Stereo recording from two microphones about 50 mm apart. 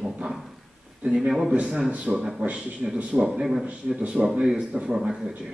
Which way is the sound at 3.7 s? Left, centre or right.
Right.